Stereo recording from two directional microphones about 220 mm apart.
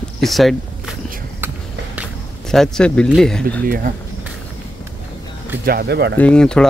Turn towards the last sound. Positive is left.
turn(degrees=5)  # may be behind; listen again after turning